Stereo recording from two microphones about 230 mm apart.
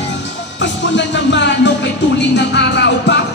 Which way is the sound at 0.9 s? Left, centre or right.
Left.